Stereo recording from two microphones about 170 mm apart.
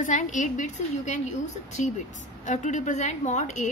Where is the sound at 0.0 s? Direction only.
45° left (ahead or behind).